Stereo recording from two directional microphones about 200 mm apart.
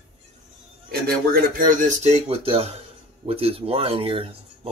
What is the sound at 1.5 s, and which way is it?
Speech, 40° right (ahead or behind).